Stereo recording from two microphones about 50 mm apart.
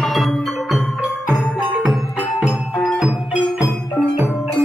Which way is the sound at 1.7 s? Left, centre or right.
Right.